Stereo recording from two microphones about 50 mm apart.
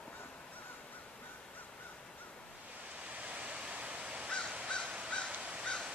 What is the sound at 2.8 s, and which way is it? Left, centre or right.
Honk, right.